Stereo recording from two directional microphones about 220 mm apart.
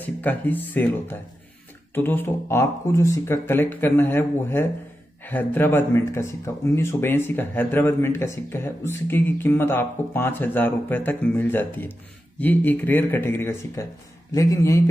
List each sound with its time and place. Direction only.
0.0 s speech: 10° left (ahead or behind)